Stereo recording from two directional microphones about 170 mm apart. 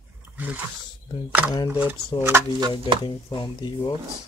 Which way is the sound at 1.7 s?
10° right (ahead or behind).